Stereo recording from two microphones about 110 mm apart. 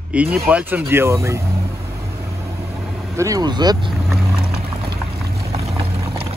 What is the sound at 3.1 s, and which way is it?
Speech, 30° right (ahead or behind).